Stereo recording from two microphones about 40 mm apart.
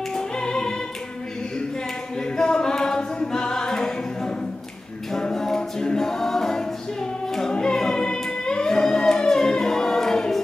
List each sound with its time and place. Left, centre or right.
0.1 s music: centre
2.3 s music: centre
5.1 s a capella: centre
7.3 s music: centre